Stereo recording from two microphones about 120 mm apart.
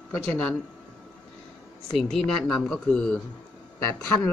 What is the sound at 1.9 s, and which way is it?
Speech, centre (ahead or behind).